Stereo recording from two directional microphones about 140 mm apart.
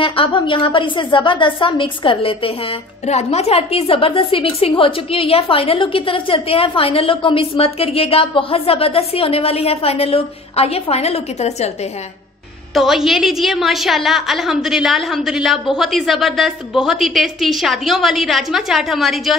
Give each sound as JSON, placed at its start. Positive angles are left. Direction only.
{"t": 0.0, "sound": "a woman's voice", "side_deg": 40}
{"t": 3.1, "sound": "a woman's voice", "side_deg": 50}
{"t": 12.7, "sound": "a woman's voice", "side_deg": 0}